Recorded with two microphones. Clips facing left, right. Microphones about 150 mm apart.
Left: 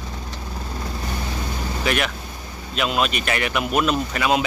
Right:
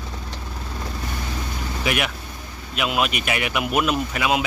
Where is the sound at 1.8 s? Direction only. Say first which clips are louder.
Left 1 dB; 10° right (ahead or behind).